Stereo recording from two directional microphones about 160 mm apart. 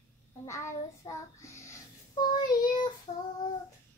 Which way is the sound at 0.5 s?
20° left (ahead or behind).